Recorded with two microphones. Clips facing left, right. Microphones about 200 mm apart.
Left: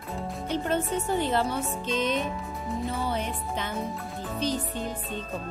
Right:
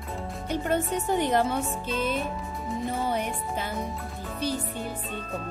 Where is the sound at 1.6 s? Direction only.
Centre (ahead or behind).